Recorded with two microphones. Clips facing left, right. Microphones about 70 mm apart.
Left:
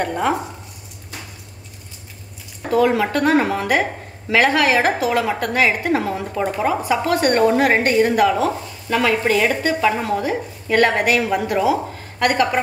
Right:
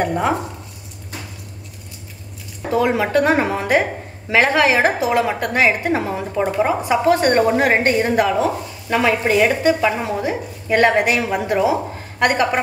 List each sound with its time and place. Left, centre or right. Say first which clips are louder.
2.7 s a woman's voice: even; right